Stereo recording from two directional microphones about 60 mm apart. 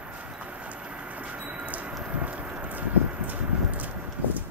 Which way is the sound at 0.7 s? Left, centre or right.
Right.